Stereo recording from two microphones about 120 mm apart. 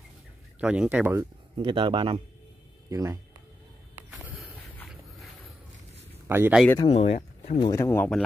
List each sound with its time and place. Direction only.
0.6 s speech: 10° right (ahead or behind)
1.6 s a man's voice: 45° right (ahead or behind)
2.9 s speech: 25° right (ahead or behind)
4.1 s a sound: 15° right (ahead or behind)
6.2 s speech: 20° right (ahead or behind)
6.9 s speech: 65° left (ahead or behind)
7.7 s speech: 20° left (ahead or behind)